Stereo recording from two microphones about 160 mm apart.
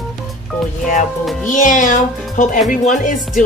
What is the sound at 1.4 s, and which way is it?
Speech, 55° left (ahead or behind).